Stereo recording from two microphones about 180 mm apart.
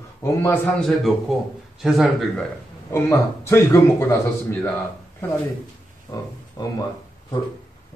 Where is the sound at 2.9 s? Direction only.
15° left (ahead or behind).